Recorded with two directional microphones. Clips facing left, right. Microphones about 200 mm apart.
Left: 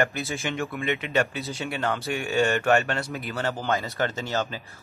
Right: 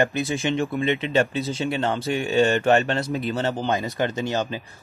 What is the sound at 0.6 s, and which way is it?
Speech, 30° right (ahead or behind).